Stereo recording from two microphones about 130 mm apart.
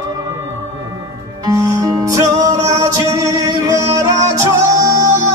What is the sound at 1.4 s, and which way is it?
Music, 25° right (ahead or behind).